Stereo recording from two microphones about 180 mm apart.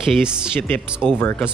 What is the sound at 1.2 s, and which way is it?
Speech, 10° left (ahead or behind).